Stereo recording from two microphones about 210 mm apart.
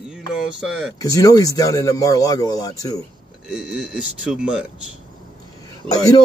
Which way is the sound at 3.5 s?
5° right (ahead or behind).